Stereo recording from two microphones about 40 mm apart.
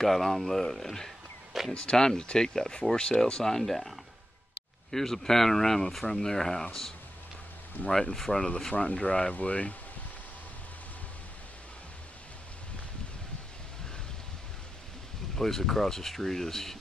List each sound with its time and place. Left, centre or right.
0.0 s speech: centre
1.7 s speech: left; by 3.9 s centre
4.9 s speech: centre
7.9 s speech: centre
8.7 s speech: left
9.3 s speech: left
15.3 s speech: centre